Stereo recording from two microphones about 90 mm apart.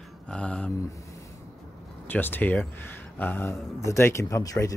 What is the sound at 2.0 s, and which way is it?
Speech, 20° left (ahead or behind).